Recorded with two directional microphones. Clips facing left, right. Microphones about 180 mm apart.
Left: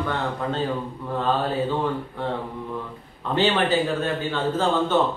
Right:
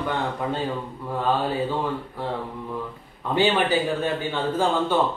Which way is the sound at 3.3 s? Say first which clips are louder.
Even; 10° right (ahead or behind).